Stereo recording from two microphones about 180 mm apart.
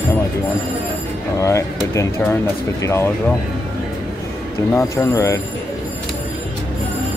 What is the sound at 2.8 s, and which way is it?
Speech, 15° left (ahead or behind).